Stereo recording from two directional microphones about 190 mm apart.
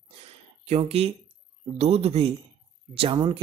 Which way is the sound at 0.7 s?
30° right (ahead or behind).